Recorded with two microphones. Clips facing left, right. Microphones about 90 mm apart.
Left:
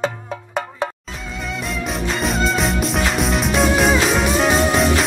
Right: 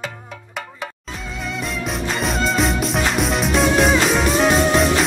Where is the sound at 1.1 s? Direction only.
Centre (ahead or behind).